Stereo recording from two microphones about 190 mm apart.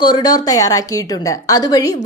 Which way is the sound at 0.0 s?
20° left (ahead or behind).